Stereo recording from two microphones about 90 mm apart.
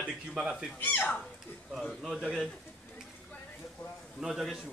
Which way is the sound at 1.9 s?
Centre (ahead or behind).